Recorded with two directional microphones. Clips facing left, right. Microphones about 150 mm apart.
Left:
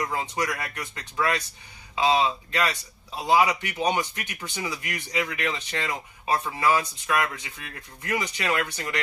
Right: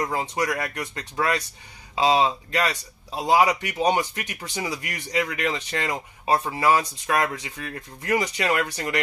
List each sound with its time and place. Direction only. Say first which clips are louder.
0.0 s speech: right 3 dB; 35° right (ahead or behind)